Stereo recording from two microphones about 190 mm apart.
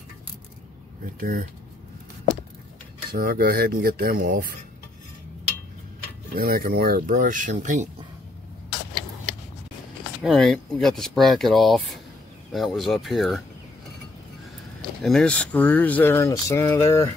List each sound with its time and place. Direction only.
1.0 s speech: 50° right (ahead or behind)
3.1 s speech: 50° right (ahead or behind)
6.3 s speech: 50° right (ahead or behind)
10.2 s speech: centre (ahead or behind)
15.0 s speech: 5° left (ahead or behind)